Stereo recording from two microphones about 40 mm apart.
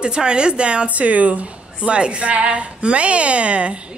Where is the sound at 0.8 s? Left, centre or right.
Right.